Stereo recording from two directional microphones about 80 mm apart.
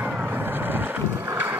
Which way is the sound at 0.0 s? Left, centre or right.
Right.